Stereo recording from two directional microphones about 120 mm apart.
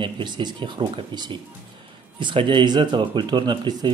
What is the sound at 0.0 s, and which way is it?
Speech, 40° right (ahead or behind).